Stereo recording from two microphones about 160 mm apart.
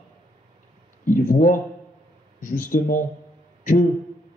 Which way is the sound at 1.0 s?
55° left (ahead or behind).